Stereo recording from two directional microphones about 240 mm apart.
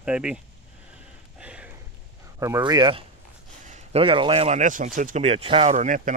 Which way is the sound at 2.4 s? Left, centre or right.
Centre.